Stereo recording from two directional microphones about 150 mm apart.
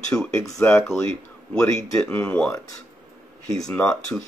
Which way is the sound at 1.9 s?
15° left (ahead or behind).